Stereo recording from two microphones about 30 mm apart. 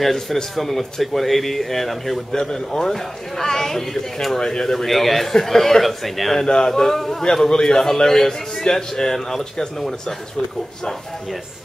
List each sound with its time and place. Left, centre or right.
0.0 s speech: centre
2.3 s speech: centre
4.8 s speech: centre
6.4 s speech: left
6.7 s speech: centre
7.4 s speech: left
9.8 s speech: centre